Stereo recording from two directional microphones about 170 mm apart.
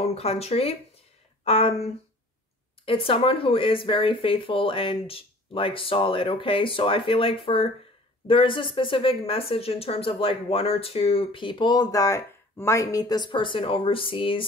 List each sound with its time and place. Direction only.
0.0 s speech: 35° left (ahead or behind)